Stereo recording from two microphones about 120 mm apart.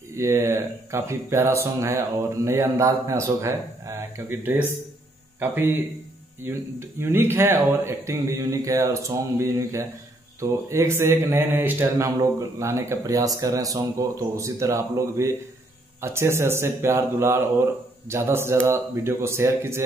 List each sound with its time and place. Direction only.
0.1 s speech: 20° right (ahead or behind)